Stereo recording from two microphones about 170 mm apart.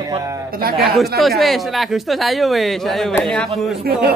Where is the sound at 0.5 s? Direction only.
60° right (ahead or behind).